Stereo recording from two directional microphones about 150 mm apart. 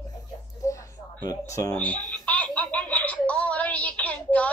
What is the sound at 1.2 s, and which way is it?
Speech, 20° left (ahead or behind).